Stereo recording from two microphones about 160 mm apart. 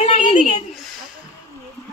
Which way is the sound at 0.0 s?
40° left (ahead or behind).